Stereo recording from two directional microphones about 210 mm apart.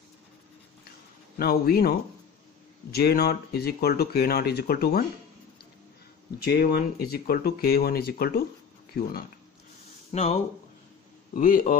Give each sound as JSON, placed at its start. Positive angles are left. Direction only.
{"t": 1.4, "sound": "speech", "side_deg": 45}
{"t": 6.4, "sound": "speech", "side_deg": 50}
{"t": 10.1, "sound": "a man's voice", "side_deg": 35}